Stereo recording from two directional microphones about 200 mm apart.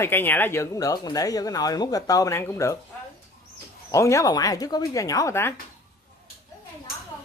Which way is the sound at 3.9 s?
15° left (ahead or behind).